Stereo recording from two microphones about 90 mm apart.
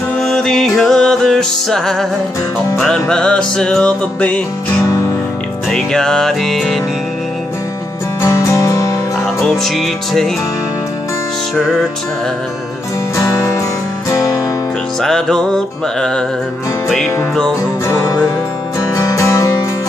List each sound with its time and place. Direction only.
0.2 s music: 5° left (ahead or behind)
5.7 s music: 5° left (ahead or behind)
8.2 s music: 35° left (ahead or behind)
9.4 s music: centre (ahead or behind)
13.1 s music: 35° left (ahead or behind)
15.0 s music: 5° left (ahead or behind)
17.8 s music: 35° left (ahead or behind)